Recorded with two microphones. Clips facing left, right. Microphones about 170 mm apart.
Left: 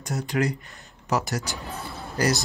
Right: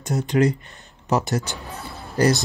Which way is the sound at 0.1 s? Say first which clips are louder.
Right 6 dB; 20° right (ahead or behind).